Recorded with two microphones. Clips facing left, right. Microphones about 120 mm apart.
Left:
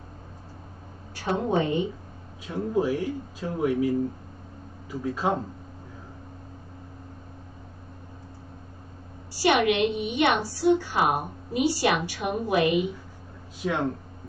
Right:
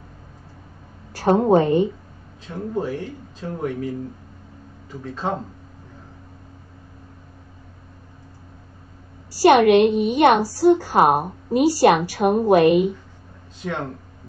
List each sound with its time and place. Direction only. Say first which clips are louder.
1.1 s a woman's voice: right 9 dB; 45° right (ahead or behind)
2.4 s speech: left 1 dB; 10° left (ahead or behind)
9.4 s a woman's voice: right 9 dB; 45° right (ahead or behind)
13.6 s speech: left 1 dB; 10° left (ahead or behind)